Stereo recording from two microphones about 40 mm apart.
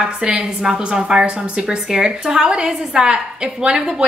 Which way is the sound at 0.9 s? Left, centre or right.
Right.